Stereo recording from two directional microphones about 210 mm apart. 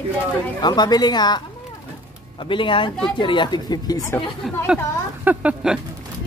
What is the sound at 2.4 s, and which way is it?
A woman's voice, 25° left (ahead or behind).